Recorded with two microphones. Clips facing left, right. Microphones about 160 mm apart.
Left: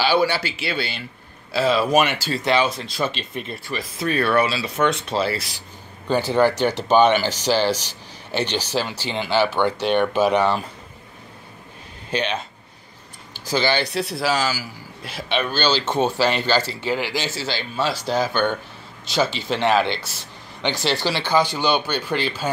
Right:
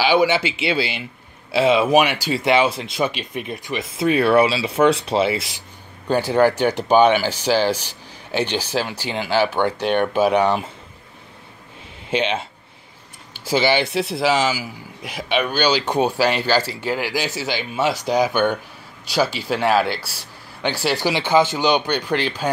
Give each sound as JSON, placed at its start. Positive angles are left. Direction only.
{"t": 0.0, "sound": "speech", "side_deg": -15}
{"t": 6.0, "sound": "a man's voice", "side_deg": -10}
{"t": 12.1, "sound": "speech", "side_deg": -20}
{"t": 13.5, "sound": "a man's voice", "side_deg": -20}